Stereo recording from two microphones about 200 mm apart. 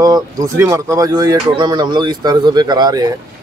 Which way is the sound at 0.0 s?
15° right (ahead or behind).